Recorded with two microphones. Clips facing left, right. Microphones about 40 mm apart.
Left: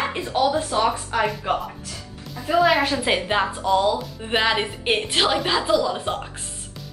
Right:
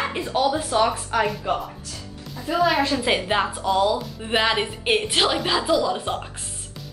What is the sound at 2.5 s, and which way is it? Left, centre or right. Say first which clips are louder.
Speech: left 3 dB; centre.